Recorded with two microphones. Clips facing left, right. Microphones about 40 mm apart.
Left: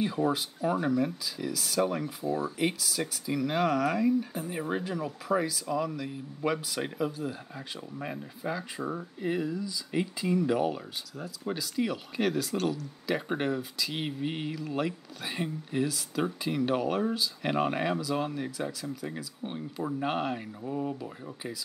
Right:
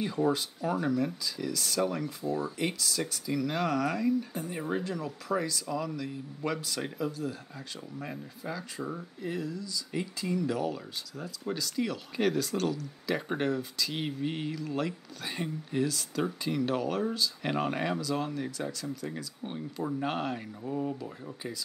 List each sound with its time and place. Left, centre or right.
0.0 s speech: centre
11.1 s speech: centre